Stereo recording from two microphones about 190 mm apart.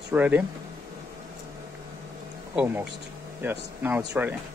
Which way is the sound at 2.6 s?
10° right (ahead or behind).